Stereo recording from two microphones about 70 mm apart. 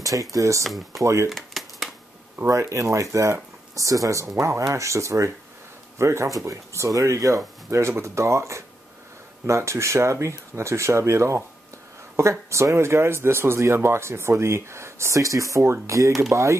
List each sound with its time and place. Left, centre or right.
0.0 s speech: right
0.7 s speech: centre
1.0 s speech: right
1.3 s shuffling cards: centre
2.3 s speech: right